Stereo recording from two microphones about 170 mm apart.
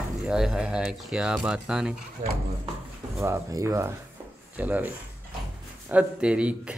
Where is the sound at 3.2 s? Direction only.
15° right (ahead or behind).